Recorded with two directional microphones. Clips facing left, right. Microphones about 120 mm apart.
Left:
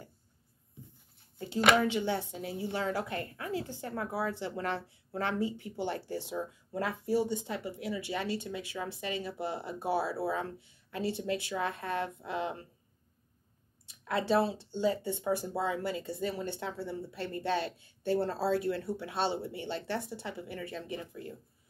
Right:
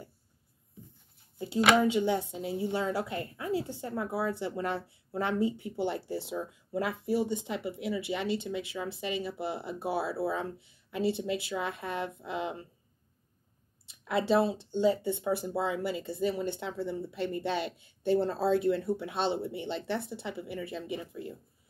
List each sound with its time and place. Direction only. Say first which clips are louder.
1.4 s speech: right 2 dB; 10° right (ahead or behind)
14.0 s speech: right 2 dB; 15° right (ahead or behind)